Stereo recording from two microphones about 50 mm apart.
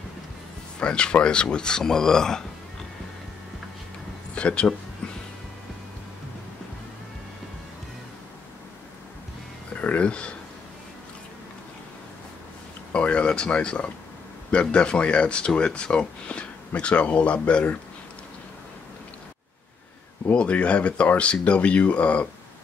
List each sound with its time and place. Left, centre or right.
0.7 s speech: centre
4.4 s speech: centre
9.8 s speech: left
12.9 s speech: left
20.3 s speech: left